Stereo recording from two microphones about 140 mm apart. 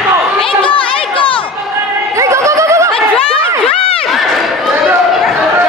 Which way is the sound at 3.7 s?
40° left (ahead or behind).